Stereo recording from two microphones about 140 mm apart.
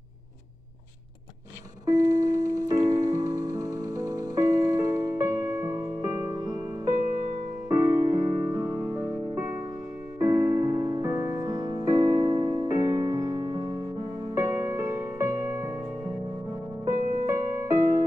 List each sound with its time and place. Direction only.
1.9 s music: 25° right (ahead or behind)
16.8 s music: 25° right (ahead or behind)